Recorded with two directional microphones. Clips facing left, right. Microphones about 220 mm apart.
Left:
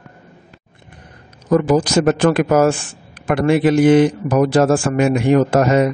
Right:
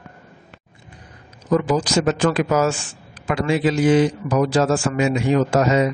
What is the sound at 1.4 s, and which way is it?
A man's voice, 55° left (ahead or behind).